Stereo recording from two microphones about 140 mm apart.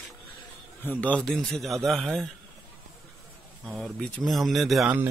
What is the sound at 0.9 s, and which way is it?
Speech, 10° left (ahead or behind).